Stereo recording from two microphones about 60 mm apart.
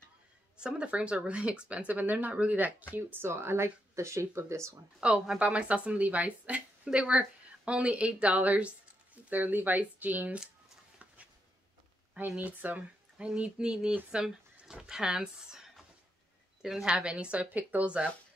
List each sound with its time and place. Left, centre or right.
0.6 s a woman's voice: centre
3.0 s speech: right
5.0 s a woman's voice: centre
12.4 s speech: right
13.3 s a woman's voice: centre